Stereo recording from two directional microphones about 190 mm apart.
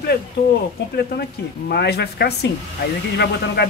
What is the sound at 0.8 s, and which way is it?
Speech, 65° left (ahead or behind).